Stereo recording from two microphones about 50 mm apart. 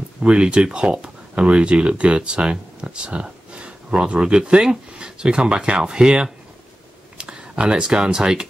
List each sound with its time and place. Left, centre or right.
0.2 s speech: centre